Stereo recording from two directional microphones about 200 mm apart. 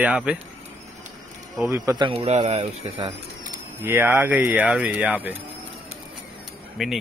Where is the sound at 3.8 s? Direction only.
10° right (ahead or behind).